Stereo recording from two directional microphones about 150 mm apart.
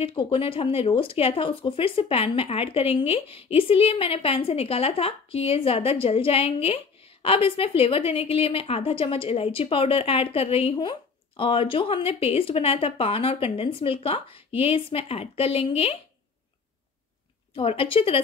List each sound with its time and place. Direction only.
0.0 s speech: 35° left (ahead or behind)
17.6 s speech: 40° left (ahead or behind)